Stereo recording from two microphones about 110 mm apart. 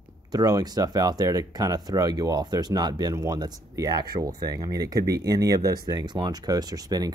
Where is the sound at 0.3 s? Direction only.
35° right (ahead or behind).